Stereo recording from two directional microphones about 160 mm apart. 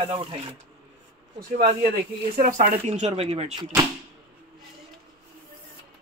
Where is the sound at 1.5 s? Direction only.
60° right (ahead or behind); by 3.5 s 40° right (ahead or behind).